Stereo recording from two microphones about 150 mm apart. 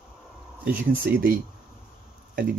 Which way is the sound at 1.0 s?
80° right.